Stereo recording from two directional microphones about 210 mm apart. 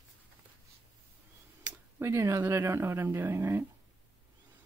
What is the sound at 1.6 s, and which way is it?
Speech, 10° right (ahead or behind).